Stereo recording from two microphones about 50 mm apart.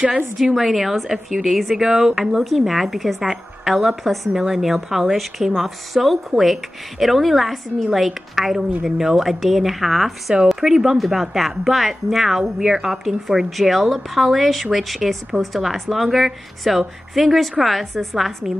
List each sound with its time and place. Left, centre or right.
0.6 s speech: centre